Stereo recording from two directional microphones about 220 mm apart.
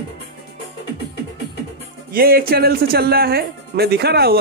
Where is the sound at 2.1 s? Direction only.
40° right (ahead or behind).